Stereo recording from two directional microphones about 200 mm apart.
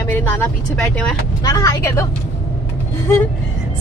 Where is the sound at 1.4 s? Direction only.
20° left (ahead or behind).